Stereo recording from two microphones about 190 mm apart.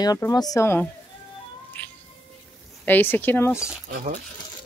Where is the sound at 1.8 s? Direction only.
10° left (ahead or behind).